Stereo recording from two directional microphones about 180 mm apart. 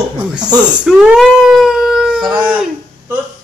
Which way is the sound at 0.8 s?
5° right (ahead or behind).